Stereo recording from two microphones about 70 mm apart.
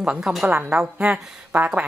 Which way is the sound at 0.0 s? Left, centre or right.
Centre.